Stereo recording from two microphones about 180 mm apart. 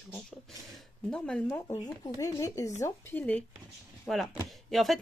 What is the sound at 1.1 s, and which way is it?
Speech, 5° left (ahead or behind).